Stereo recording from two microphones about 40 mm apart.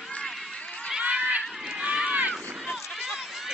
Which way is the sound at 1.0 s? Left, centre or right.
Right.